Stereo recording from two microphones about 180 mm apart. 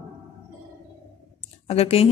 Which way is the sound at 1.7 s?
35° left (ahead or behind).